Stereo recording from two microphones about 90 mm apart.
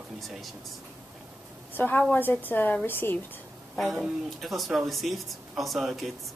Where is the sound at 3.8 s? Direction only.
Centre (ahead or behind).